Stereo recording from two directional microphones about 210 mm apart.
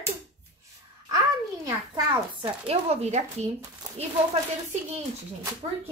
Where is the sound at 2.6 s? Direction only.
30° right (ahead or behind).